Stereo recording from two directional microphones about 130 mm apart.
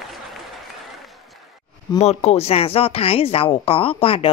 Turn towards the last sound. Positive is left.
turn(degrees=45)  # may be behind; listen again after turning